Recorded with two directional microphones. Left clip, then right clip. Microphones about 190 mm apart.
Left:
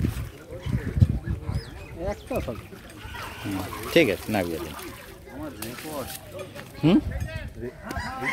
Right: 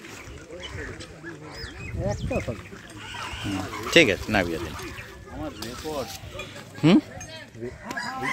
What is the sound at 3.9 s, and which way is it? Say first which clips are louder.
Speech: right 3 dB; centre (ahead or behind).